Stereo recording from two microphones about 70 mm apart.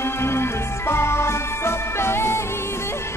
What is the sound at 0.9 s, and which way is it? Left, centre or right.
Music, left.